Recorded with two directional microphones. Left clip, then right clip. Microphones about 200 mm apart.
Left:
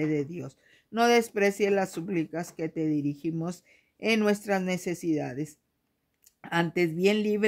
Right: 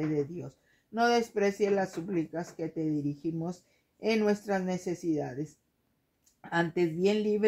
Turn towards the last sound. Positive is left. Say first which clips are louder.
# left 2 dB
turn(degrees=40)  # may be behind; listen again after turning